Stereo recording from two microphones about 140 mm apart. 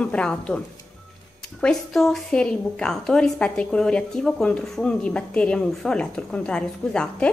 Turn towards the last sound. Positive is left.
turn(degrees=5)  # may be behind; listen again after turning